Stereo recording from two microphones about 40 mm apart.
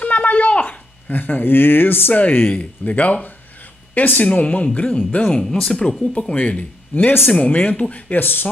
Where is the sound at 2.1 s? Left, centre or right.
Left.